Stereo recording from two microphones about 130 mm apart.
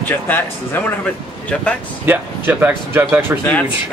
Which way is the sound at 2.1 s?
15° right (ahead or behind).